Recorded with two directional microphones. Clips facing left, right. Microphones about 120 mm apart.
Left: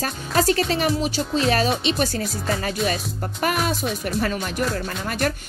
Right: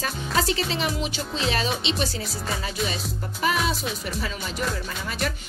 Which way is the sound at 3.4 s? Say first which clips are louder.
Left 2 dB; 55° left (ahead or behind).